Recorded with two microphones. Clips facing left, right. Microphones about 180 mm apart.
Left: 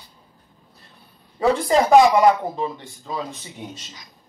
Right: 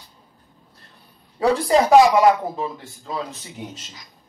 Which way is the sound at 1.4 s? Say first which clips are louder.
Right 1 dB; centre (ahead or behind).